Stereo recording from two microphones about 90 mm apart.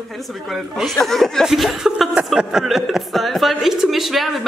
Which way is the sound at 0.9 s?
5° left (ahead or behind).